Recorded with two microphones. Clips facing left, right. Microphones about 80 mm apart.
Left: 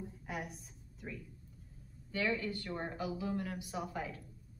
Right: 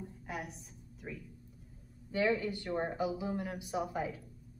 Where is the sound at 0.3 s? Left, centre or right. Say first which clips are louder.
Right 1 dB; centre.